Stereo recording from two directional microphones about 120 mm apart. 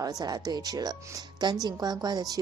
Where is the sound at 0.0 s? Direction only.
35° right (ahead or behind).